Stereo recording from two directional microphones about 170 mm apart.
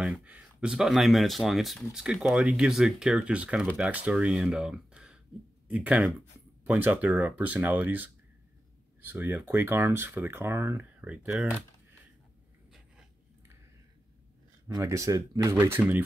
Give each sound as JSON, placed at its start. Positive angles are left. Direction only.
{"t": 0.0, "sound": "speech", "side_deg": -5}
{"t": 14.7, "sound": "speech", "side_deg": -15}